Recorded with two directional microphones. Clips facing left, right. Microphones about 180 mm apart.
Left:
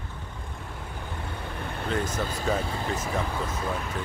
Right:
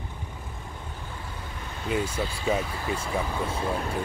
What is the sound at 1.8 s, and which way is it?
Speech, 10° right (ahead or behind).